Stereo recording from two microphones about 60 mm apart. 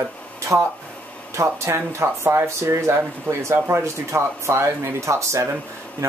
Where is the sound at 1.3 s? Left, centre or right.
Right.